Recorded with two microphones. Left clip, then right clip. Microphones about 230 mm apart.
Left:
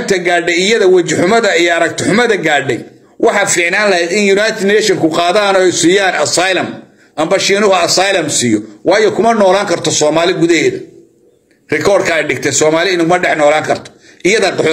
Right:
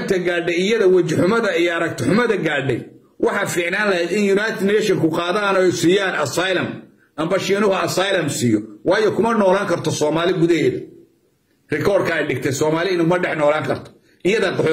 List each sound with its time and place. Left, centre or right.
0.0 s a man's voice: centre
11.7 s a man's voice: centre